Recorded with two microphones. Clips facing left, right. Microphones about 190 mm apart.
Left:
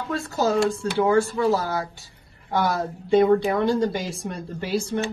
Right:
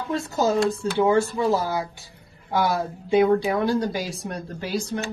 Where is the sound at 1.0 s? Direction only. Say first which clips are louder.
Even; 15° right (ahead or behind).